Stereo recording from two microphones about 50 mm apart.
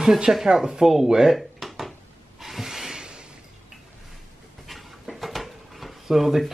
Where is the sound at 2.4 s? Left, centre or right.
Centre.